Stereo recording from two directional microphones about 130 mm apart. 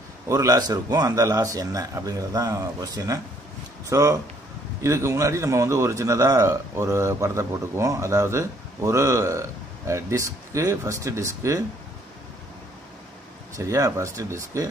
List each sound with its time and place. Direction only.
0.3 s a man's voice: 25° right (ahead or behind)
13.6 s a man's voice: 25° right (ahead or behind)